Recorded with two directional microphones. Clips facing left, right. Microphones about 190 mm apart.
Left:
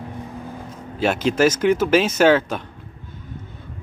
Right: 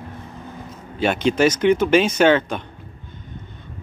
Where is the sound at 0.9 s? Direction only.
5° left (ahead or behind).